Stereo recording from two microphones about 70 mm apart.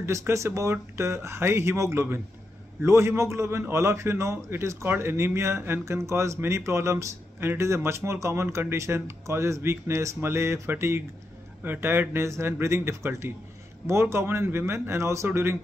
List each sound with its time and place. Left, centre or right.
0.0 s speech: right